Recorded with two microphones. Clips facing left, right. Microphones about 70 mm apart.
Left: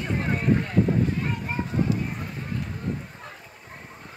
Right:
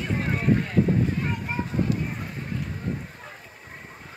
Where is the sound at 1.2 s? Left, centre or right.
Centre.